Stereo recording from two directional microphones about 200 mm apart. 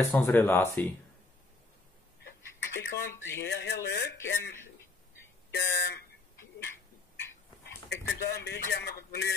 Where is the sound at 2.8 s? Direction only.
60° left (ahead or behind).